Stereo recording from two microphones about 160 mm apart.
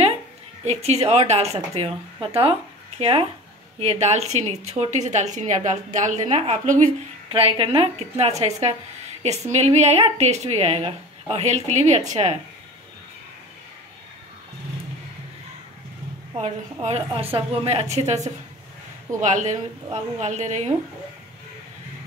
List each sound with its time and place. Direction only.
0.7 s a woman's voice: 40° right (ahead or behind)
16.3 s a woman's voice: 40° right (ahead or behind)